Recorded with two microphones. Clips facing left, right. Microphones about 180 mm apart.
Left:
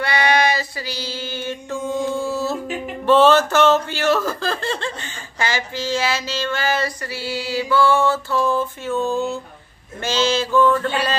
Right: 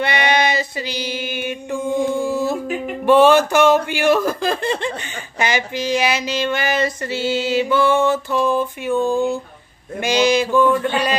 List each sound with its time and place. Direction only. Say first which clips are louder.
0.0 s female singing: even; 20° right (ahead or behind)
3.1 s speech: right 2 dB; 15° right (ahead or behind)